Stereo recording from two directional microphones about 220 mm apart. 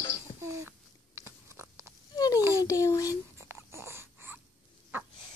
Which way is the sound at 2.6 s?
15° left (ahead or behind).